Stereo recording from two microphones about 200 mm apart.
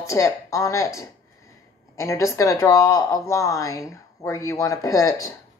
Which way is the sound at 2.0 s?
15° left (ahead or behind).